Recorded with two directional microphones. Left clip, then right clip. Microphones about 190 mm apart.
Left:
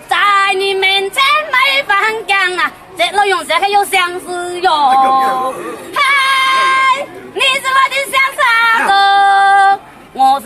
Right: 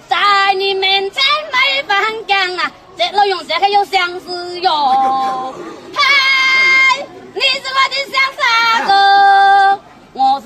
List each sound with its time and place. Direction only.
0.1 s child singing: 10° right (ahead or behind)
2.5 s a woman's voice: 15° right (ahead or behind)
5.9 s a sound: 15° right (ahead or behind)